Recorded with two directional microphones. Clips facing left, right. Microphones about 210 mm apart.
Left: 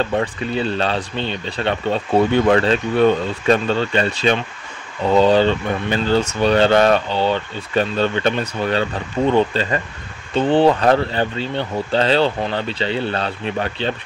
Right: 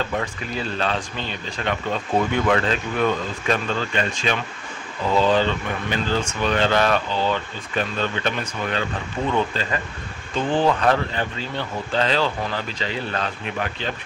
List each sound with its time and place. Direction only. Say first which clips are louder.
0.1 s speech: left 6 dB; 30° left (ahead or behind)